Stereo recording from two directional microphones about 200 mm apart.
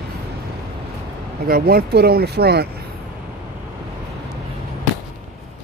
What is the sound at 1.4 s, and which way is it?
Speech, 50° right (ahead or behind).